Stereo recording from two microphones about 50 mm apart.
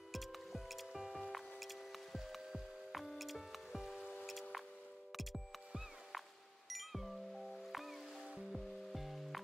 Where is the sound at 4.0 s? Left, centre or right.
Left.